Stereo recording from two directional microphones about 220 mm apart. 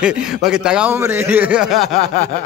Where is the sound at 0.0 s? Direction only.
5° right (ahead or behind).